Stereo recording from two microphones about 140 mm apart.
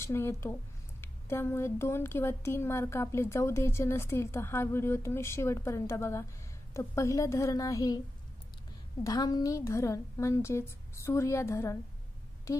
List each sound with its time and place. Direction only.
0.0 s speech: 20° left (ahead or behind)
9.0 s speech: 25° left (ahead or behind)